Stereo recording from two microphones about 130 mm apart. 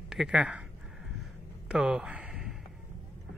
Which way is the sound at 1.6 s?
5° right (ahead or behind).